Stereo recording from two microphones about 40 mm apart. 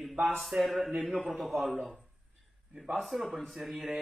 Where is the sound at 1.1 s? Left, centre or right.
Right.